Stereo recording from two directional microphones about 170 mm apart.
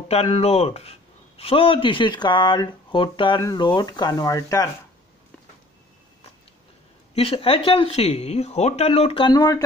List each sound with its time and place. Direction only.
0.1 s speech: 35° left (ahead or behind); by 4.6 s 20° left (ahead or behind)
7.2 s speech: 35° left (ahead or behind)